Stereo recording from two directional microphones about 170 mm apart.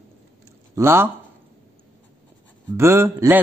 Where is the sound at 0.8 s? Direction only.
15° right (ahead or behind).